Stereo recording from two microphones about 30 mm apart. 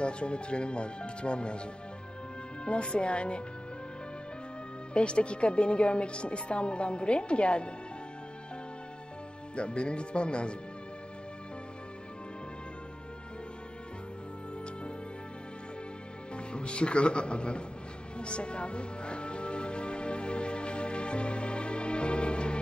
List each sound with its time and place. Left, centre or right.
0.0 s a woman's voice: left
2.6 s a woman's voice: left
4.9 s a woman's voice: left
9.6 s a woman's voice: left
16.3 s speech: left
18.2 s music: left